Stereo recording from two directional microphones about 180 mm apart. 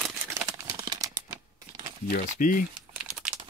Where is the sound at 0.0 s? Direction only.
15° right (ahead or behind).